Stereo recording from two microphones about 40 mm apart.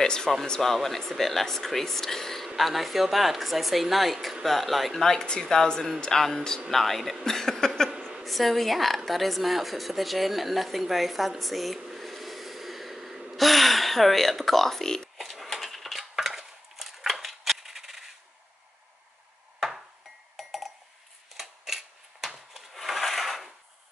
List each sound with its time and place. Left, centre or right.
0.0 s speech: centre
0.8 s speech: centre
5.0 s a woman's voice: centre
6.7 s speech: centre
7.2 s a sound: centre
8.2 s a woman's voice: centre
13.4 s speech: centre
15.1 s coin: centre
20.3 s a sound: centre
22.5 s wood: centre